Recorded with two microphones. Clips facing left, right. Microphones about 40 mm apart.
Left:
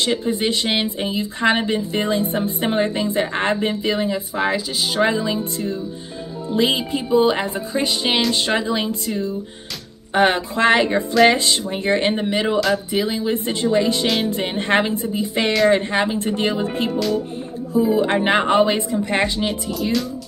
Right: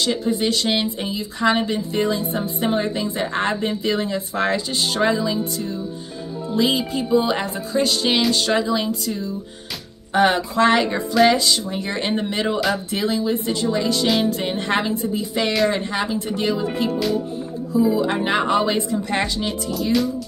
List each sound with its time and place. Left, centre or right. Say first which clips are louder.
0.0 s a woman's voice: left 1 dB; left
3.8 s speech: left 1 dB; centre
5.0 s speech: even; left
6.5 s speech: left 1 dB; left
9.0 s a woman's voice: left 2 dB; left
10.1 s a woman's voice: even; left
12.1 s speech: left 2 dB; centre
12.5 s speech: left 3 dB; centre
13.3 s a woman's voice: left 2 dB; left
14.0 s speech: right 1 dB; centre
14.3 s a woman's voice: left 3 dB; left
19.7 s speech: right 2 dB; centre